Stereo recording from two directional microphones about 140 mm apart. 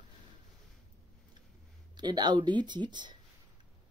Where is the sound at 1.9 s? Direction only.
30° right (ahead or behind).